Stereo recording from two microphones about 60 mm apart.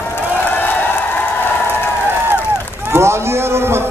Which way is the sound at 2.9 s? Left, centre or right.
Right.